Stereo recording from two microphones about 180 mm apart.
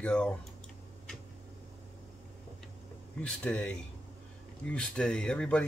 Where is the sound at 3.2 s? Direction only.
5° left (ahead or behind).